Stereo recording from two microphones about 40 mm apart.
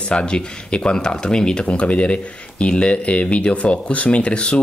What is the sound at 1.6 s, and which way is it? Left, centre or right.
Speech, left.